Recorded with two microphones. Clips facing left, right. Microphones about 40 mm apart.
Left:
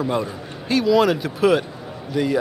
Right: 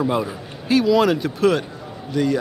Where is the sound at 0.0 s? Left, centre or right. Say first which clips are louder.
Right 2 dB; centre.